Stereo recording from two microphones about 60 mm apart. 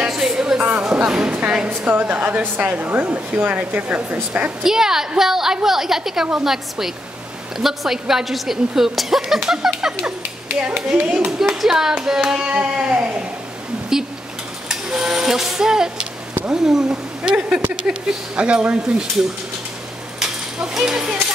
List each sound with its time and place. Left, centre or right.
0.1 s music: centre
0.6 s a sound: right
0.8 s a woman's voice: centre
1.7 s a woman's voice: right
2.0 s speech: right
4.6 s a woman's voice: centre
9.5 s music: centre
11.0 s speech: right
11.3 s a woman's voice: centre
12.5 s speech: centre
13.9 s a woman's voice: centre